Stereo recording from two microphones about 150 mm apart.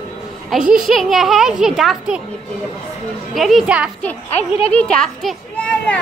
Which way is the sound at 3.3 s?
Centre (ahead or behind).